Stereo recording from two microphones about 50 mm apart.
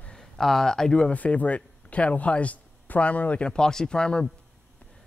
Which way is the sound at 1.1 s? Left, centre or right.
Left.